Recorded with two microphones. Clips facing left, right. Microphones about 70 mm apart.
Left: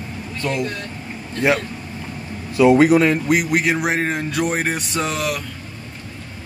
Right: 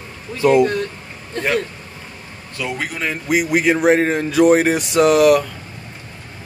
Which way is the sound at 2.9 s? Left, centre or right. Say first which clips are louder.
Left 4 dB; centre.